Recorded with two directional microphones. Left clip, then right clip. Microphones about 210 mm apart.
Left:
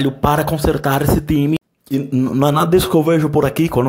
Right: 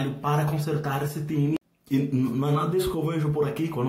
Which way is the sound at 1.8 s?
30° left (ahead or behind).